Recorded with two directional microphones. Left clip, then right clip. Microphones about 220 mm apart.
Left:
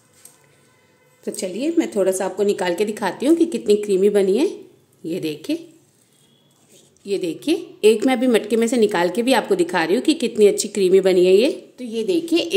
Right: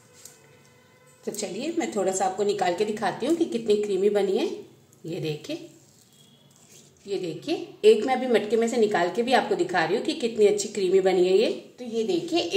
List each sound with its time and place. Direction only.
1.2 s a woman's voice: 50° left (ahead or behind)
7.1 s a woman's voice: 50° left (ahead or behind)